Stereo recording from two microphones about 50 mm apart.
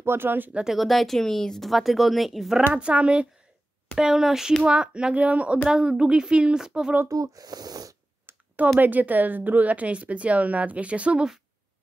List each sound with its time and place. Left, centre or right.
0.0 s speech: right
0.7 s speech: centre
2.7 s speech: right
3.9 s speech: centre; by 5.6 s right
5.7 s speech: centre
8.3 s a sound: right
8.7 s speech: right